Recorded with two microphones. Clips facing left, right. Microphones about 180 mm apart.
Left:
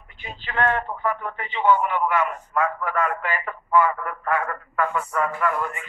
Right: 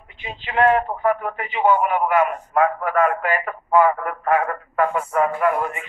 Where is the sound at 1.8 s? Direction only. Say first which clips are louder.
Right 4 dB; 55° right (ahead or behind).